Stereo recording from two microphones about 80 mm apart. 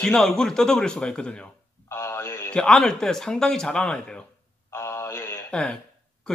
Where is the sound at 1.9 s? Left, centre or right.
Left.